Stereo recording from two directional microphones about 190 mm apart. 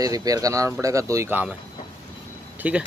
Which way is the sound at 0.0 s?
20° right (ahead or behind).